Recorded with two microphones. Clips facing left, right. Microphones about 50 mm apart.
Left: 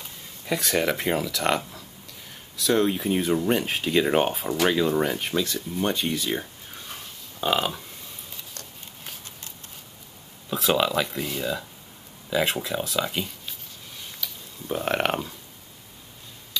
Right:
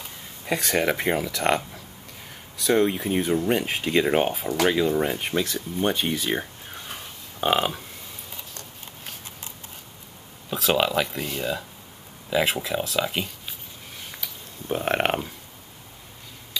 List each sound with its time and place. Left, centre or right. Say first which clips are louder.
0.7 s speech: right 1 dB; right
2.6 s speech: right 1 dB; centre
5.0 s speech: even; centre
5.3 s speech: right 1 dB; right
6.9 s burping: right 2 dB; right
10.7 s speech: right 1 dB; centre
14.8 s a sound: right 1 dB; centre